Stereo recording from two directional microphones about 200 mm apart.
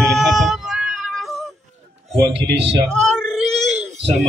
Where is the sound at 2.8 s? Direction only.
5° left (ahead or behind).